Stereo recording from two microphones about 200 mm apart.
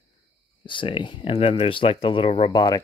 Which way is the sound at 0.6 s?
25° left (ahead or behind).